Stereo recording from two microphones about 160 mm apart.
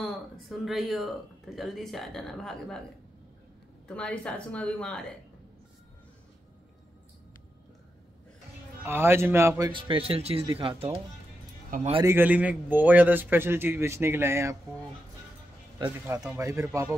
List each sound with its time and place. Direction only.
0.0 s speech: centre (ahead or behind)
3.8 s speech: 5° left (ahead or behind)
8.8 s a man's voice: 15° right (ahead or behind)
9.7 s speech: 30° right (ahead or behind)
12.0 s a man's voice: 15° right (ahead or behind)
16.3 s speech: 20° right (ahead or behind)